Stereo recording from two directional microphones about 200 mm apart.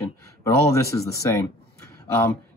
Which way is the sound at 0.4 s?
15° left (ahead or behind).